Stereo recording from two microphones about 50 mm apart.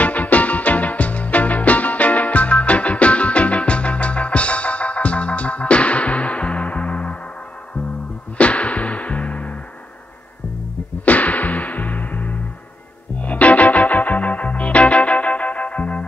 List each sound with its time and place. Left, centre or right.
0.0 s music: left
8.4 s music: left
11.1 s music: left